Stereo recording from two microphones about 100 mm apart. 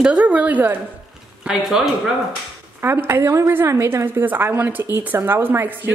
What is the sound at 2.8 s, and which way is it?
A woman's voice, 25° right (ahead or behind).